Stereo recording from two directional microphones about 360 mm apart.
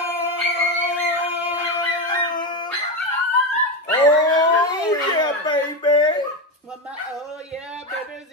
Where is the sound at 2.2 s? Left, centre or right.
Centre.